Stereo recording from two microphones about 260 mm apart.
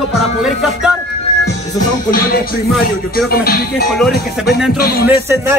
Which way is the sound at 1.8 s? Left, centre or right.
Left.